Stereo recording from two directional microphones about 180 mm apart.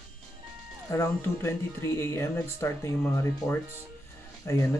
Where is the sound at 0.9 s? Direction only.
15° left (ahead or behind).